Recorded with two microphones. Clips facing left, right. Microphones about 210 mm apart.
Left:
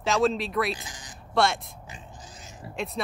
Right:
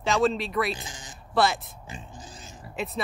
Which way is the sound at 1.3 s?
Centre (ahead or behind).